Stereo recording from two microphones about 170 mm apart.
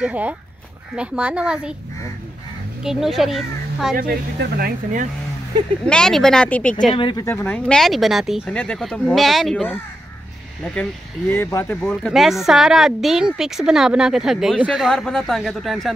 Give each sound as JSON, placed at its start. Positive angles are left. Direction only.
{"t": 0.0, "sound": "speech", "side_deg": -10}
{"t": 2.8, "sound": "speech", "side_deg": 0}
{"t": 3.9, "sound": "speech", "side_deg": -60}
{"t": 5.9, "sound": "speech", "side_deg": 5}
{"t": 7.0, "sound": "speech", "side_deg": 30}
{"t": 7.2, "sound": "speech", "side_deg": 10}
{"t": 11.8, "sound": "speech", "side_deg": 5}